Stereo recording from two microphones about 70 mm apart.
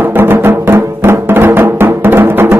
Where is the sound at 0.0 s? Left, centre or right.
Right.